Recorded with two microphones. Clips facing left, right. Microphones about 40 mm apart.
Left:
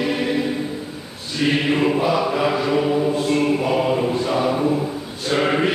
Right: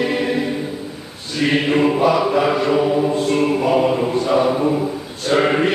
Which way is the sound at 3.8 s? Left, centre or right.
Centre.